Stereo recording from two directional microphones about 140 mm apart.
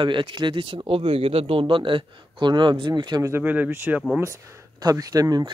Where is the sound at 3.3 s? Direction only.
10° right (ahead or behind).